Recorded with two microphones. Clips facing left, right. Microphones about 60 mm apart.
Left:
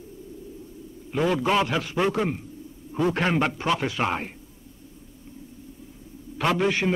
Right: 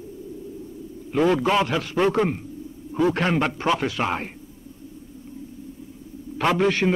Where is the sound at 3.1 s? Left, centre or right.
Centre.